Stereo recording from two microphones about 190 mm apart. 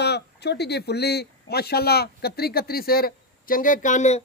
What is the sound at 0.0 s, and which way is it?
Speech, 60° left (ahead or behind).